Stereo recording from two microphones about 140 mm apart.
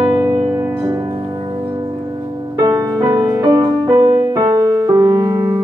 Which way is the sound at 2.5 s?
25° right (ahead or behind).